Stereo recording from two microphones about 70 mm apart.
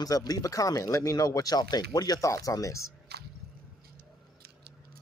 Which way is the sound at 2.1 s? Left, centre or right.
Left.